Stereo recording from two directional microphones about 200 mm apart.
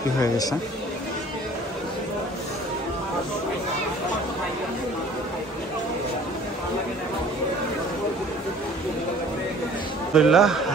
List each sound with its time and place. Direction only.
0.2 s speech: 20° left (ahead or behind)
10.1 s a man's voice: 5° right (ahead or behind)